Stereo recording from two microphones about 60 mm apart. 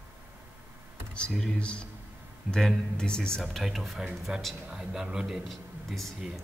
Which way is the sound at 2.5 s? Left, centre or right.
Centre.